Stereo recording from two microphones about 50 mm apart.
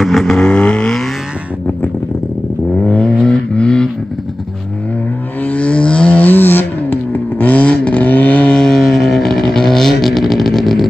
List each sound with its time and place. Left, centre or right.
0.0 s vehicle: centre
0.4 s vehicle: left
2.8 s vehicle: left
5.4 s a sound: left
8.5 s vehicle: centre